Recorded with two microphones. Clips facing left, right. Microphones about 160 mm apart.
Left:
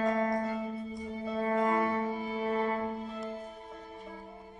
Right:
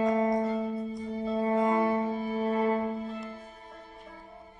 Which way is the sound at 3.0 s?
Centre (ahead or behind).